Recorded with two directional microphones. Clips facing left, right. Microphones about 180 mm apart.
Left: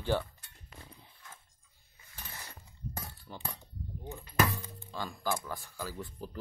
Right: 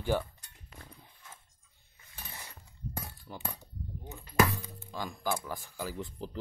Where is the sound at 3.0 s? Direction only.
10° right (ahead or behind).